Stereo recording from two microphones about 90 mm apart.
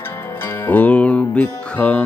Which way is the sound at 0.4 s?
25° left (ahead or behind).